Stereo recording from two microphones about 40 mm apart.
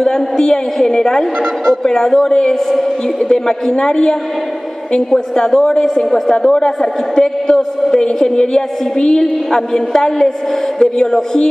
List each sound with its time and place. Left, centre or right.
0.0 s a woman's voice: centre